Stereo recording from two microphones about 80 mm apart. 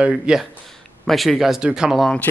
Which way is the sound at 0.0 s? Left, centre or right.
Centre.